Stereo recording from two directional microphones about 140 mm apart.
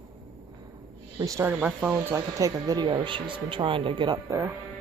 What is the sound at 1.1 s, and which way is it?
Speech, 20° right (ahead or behind).